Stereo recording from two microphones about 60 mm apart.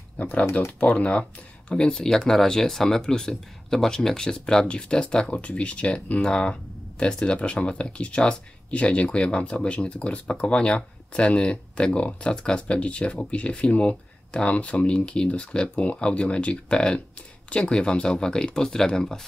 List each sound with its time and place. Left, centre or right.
0.2 s speech: left